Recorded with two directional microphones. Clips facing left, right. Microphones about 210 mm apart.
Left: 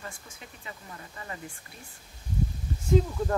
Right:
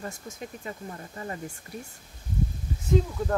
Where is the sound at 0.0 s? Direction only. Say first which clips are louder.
Right 7 dB; 40° right (ahead or behind).